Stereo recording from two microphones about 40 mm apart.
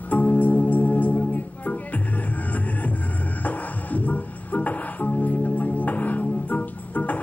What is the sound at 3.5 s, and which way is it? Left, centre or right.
Music, left.